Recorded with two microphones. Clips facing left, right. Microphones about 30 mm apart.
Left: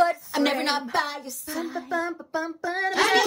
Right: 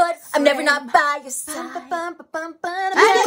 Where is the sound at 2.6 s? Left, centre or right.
Right.